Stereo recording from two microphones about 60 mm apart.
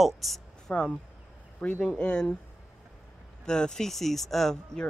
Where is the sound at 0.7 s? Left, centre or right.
Left.